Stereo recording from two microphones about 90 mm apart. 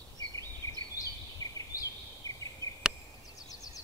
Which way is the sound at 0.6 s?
35° left (ahead or behind).